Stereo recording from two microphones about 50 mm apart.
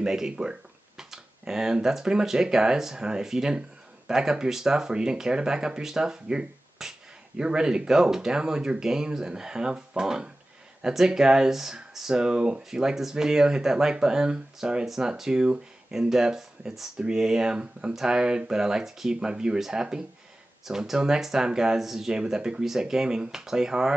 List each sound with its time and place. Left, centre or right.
0.0 s speech: centre